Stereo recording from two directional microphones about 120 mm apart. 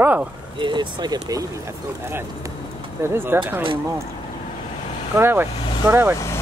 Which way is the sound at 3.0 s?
20° right (ahead or behind).